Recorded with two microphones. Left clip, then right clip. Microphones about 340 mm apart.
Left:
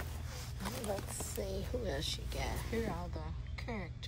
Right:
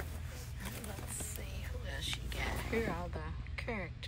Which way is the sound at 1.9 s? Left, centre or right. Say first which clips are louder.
Left 2 dB; centre.